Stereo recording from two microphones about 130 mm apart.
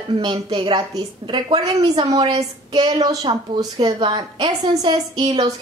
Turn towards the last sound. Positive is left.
turn(degrees=-35)  # may be behind; listen again after turning